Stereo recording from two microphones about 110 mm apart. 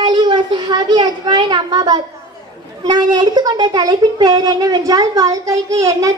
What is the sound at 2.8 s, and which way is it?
Speech, 40° right (ahead or behind).